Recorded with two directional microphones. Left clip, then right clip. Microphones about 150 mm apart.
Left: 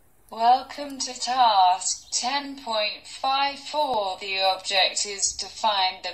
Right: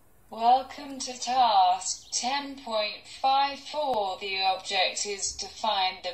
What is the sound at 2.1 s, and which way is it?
Speech, 30° left (ahead or behind).